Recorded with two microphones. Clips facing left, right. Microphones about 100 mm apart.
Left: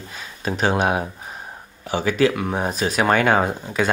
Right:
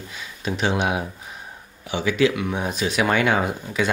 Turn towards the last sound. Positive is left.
turn(degrees=35)  # may be behind; listen again after turning